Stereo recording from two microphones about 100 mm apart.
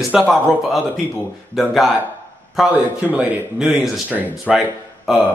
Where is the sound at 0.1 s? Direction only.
5° right (ahead or behind).